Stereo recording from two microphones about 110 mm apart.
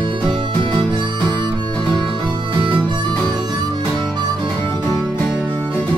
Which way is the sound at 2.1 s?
45° right (ahead or behind).